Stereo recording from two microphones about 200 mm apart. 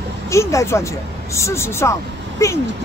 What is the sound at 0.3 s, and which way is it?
A woman's voice, 15° left (ahead or behind).